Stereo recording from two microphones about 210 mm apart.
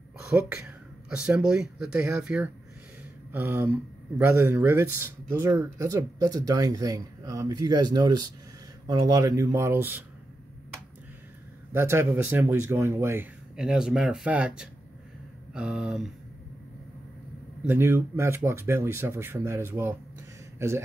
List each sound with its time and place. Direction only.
0.3 s speech: 10° right (ahead or behind)
11.7 s speech: 10° right (ahead or behind)
17.6 s speech: 10° right (ahead or behind)